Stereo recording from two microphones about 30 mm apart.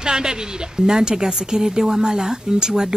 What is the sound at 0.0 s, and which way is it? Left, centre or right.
Speech, right.